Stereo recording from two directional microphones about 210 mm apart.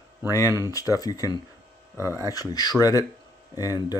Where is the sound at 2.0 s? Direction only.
10° right (ahead or behind).